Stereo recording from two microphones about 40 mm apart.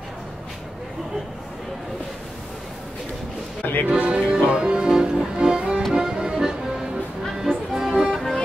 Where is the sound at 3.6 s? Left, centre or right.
Left.